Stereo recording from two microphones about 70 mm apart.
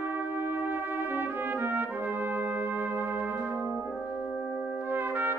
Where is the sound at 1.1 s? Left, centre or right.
Right.